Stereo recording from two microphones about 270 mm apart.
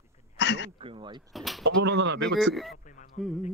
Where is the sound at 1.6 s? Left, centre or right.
Right.